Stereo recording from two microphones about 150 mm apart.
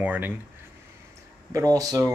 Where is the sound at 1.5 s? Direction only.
25° right (ahead or behind).